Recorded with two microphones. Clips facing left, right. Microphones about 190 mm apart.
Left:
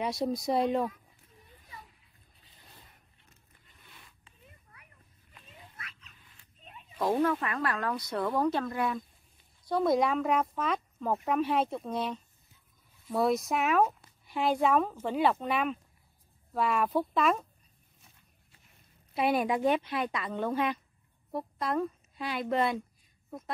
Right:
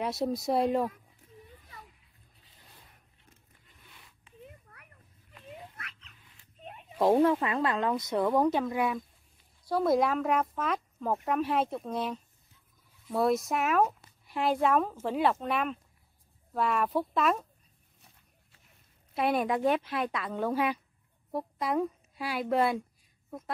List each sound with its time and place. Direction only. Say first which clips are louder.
0.0 s speech: even; 5° right (ahead or behind)
6.6 s a sound: right 7 dB; 60° right (ahead or behind)
7.0 s speech: right 4 dB; 30° right (ahead or behind); by 17.5 s centre (ahead or behind)
19.1 s a woman's voice: even; centre (ahead or behind)